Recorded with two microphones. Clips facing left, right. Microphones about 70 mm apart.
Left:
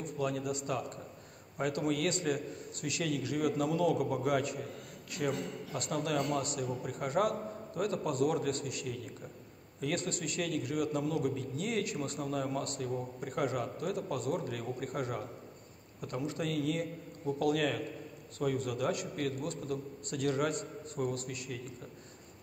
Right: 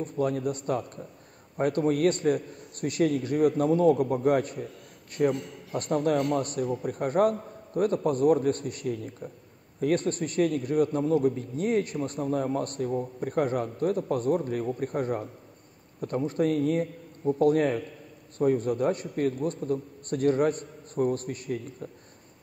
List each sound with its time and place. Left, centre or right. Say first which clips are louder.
0.0 s a man's voice: right 7 dB; right